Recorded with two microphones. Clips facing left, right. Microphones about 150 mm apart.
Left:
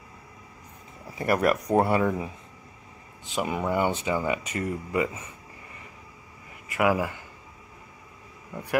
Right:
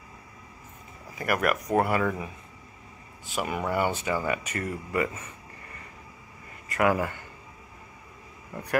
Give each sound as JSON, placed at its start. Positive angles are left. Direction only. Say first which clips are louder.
{"t": 1.1, "sound": "speech", "louder": "left 3 dB", "side_deg": 30}
{"t": 3.3, "sound": "speech", "louder": "left 2 dB", "side_deg": 20}
{"t": 6.7, "sound": "speech", "louder": "even", "side_deg": 10}